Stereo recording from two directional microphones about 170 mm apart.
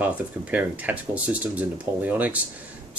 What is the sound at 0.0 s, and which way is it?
Speech, 10° right (ahead or behind).